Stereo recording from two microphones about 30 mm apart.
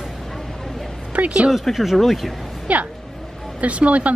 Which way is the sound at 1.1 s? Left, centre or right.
Right.